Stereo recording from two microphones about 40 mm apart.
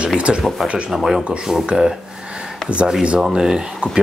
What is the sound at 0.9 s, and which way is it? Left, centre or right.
Speech, centre.